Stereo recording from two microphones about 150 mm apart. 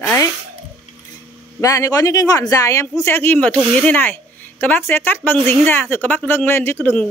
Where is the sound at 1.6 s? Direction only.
20° left (ahead or behind).